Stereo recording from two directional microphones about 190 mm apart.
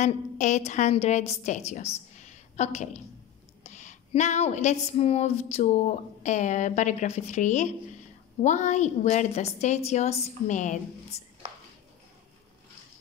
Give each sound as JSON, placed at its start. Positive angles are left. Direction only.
{"t": 0.0, "sound": "speech", "side_deg": 40}
{"t": 2.1, "sound": "a sound", "side_deg": 40}
{"t": 3.6, "sound": "speech", "side_deg": 40}